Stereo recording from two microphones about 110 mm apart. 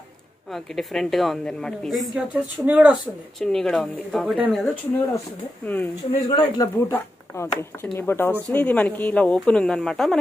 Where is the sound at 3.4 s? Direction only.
5° left (ahead or behind).